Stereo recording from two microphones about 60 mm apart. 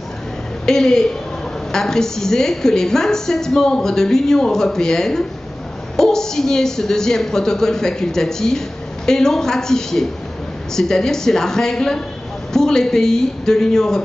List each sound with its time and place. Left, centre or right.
0.7 s a woman's voice: centre